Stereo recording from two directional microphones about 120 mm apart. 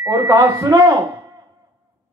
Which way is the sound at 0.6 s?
30° right (ahead or behind).